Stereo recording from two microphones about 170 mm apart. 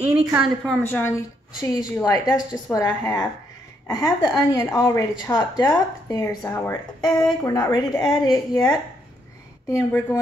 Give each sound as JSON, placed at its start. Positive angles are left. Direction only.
{"t": 0.4, "sound": "a woman's voice", "side_deg": 5}